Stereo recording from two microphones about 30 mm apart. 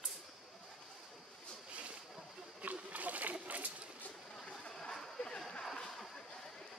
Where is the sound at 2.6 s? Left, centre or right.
Right.